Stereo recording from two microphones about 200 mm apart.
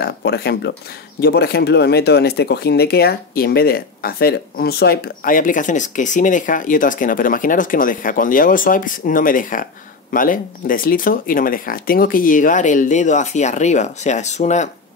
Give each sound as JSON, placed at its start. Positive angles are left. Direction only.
{"t": 0.0, "sound": "speech", "side_deg": 55}